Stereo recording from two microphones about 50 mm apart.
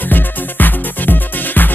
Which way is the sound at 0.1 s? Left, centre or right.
Left.